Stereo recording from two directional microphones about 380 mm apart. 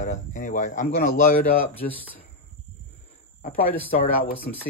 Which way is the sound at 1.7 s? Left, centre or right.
Centre.